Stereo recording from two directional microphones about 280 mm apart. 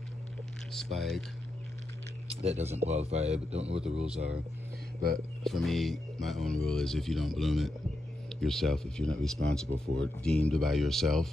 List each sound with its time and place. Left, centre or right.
0.7 s speech: centre
2.2 s a sound: right
2.8 s a man's voice: right
5.4 s speech: centre